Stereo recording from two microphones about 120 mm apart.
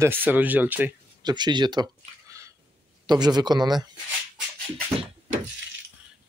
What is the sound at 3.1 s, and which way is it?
Speech, 35° right (ahead or behind).